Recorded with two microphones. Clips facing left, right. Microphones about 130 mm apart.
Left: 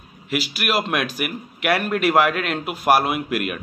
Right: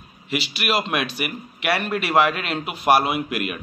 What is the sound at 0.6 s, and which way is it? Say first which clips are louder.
Speech: even; 5° left (ahead or behind).